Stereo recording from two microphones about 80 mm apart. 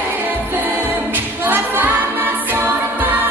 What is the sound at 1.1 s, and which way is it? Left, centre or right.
A capella, right.